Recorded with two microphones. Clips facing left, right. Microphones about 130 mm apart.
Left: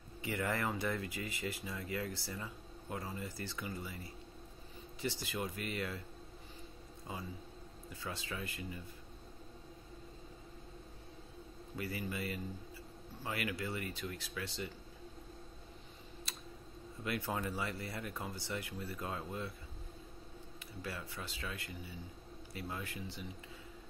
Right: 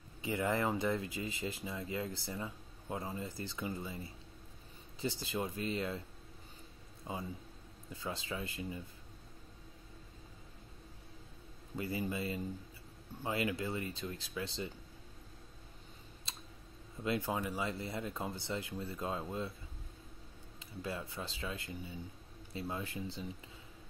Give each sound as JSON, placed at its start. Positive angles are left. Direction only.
{"t": 0.2, "sound": "speech", "side_deg": -20}
{"t": 5.2, "sound": "speech", "side_deg": -25}
{"t": 7.1, "sound": "speech", "side_deg": -20}
{"t": 11.7, "sound": "speech", "side_deg": -25}
{"t": 17.0, "sound": "speech", "side_deg": -20}
{"t": 20.5, "sound": "speech", "side_deg": -25}